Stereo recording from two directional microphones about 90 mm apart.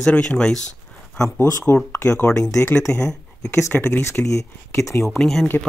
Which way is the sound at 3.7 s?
25° left (ahead or behind).